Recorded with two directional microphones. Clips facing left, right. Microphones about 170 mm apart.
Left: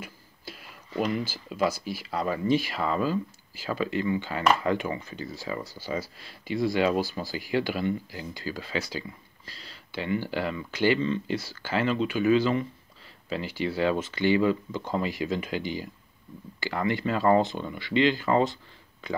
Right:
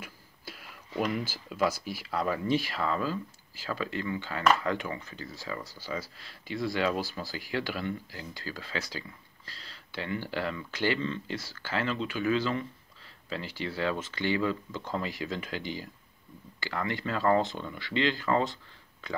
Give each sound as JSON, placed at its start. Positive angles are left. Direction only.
{"t": 0.0, "sound": "tick-tock", "side_deg": -5}
{"t": 1.5, "sound": "speech", "side_deg": 5}
{"t": 6.4, "sound": "speech", "side_deg": 5}